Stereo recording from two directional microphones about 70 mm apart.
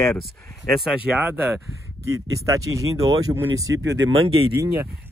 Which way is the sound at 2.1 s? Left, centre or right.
Right.